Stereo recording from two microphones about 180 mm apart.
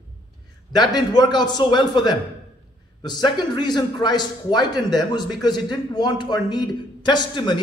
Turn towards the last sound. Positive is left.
turn(degrees=25)  # may be behind; listen again after turning